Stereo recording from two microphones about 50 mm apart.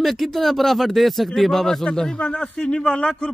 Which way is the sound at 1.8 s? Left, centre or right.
Centre.